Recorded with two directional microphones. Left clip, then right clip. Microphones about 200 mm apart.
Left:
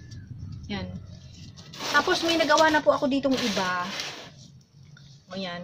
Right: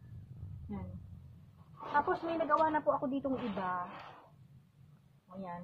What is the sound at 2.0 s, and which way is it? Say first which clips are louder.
Speech: left 10 dB; 25° left (ahead or behind).